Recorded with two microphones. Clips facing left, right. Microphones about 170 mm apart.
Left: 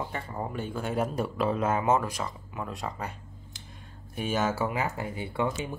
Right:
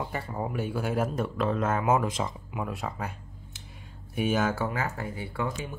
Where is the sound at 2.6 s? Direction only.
5° right (ahead or behind); by 5.7 s 20° left (ahead or behind).